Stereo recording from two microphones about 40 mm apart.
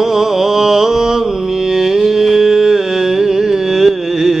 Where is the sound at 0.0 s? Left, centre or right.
Centre.